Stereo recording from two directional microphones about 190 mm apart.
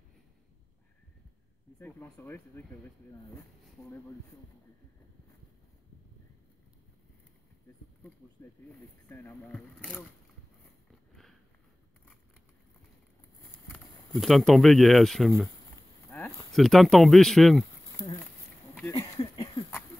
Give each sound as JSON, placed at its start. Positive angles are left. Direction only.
{"t": 1.8, "sound": "speech", "side_deg": 10}
{"t": 9.1, "sound": "speech", "side_deg": 15}
{"t": 13.7, "sound": "speech", "side_deg": 0}
{"t": 18.9, "sound": "a sound", "side_deg": 20}